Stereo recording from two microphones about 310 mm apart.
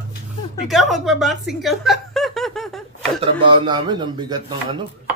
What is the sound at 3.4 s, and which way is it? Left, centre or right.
Speech, centre.